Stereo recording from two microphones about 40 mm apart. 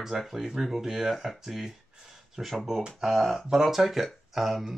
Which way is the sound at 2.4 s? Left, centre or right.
Right.